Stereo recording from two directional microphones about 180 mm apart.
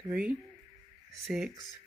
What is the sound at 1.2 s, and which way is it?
Speech, centre (ahead or behind).